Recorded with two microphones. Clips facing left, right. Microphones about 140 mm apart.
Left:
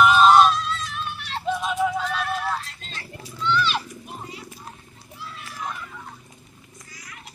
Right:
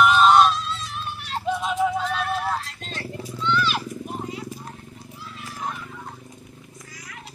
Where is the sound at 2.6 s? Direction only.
75° right (ahead or behind).